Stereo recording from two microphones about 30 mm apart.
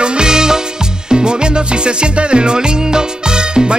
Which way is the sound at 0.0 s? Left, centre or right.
Right.